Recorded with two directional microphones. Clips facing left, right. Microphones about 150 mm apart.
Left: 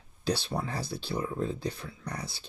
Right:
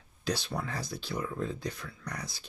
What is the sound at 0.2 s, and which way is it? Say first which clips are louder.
Speech: left 3 dB; 30° left (ahead or behind).